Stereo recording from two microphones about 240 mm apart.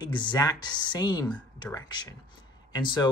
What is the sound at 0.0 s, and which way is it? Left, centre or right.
Speech, centre.